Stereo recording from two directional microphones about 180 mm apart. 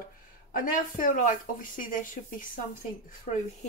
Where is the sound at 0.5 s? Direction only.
50° left (ahead or behind).